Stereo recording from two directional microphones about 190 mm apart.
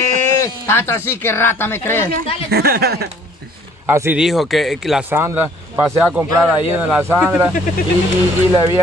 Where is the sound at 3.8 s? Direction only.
10° right (ahead or behind).